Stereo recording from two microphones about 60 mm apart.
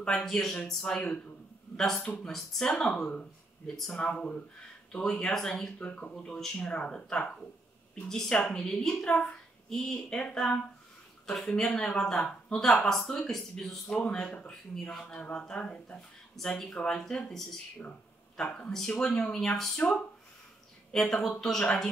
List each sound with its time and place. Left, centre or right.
0.0 s speech: centre
3.7 s speech: centre
4.0 s speech: centre
5.8 s speech: left; by 13.8 s centre
13.8 s speech: left; by 17.8 s centre
17.8 s a sound: centre
18.7 s speech: centre
19.3 s speech: centre
20.9 s speech: centre